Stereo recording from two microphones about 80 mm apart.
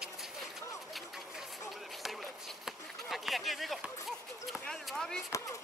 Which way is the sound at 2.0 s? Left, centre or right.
Centre.